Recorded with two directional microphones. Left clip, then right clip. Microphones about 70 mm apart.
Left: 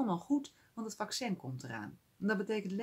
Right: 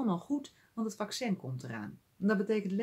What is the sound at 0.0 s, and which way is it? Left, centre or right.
Speech, left.